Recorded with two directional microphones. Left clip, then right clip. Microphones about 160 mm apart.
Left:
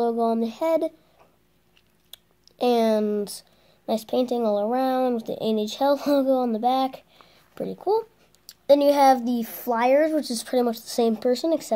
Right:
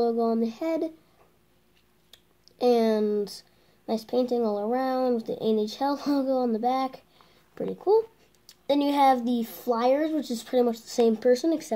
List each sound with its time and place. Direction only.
0.0 s speech: 20° left (ahead or behind)
2.6 s speech: 25° left (ahead or behind)